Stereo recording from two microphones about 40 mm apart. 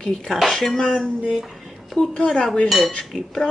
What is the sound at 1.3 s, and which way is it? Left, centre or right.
Speech, centre.